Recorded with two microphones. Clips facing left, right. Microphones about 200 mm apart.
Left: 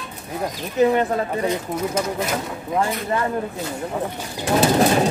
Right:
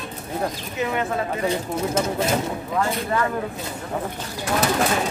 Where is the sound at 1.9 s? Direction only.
25° right (ahead or behind).